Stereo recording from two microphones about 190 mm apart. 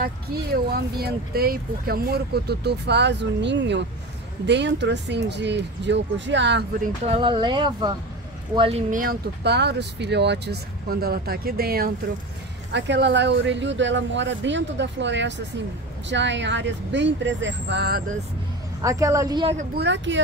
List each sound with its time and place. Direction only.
0.0 s speech: 55° right (ahead or behind)
7.1 s speech: 25° right (ahead or behind)
8.9 s speech: 55° right (ahead or behind)
12.7 s speech: 65° right (ahead or behind)
18.8 s a woman's voice: 15° right (ahead or behind)
19.7 s speech: 65° right (ahead or behind)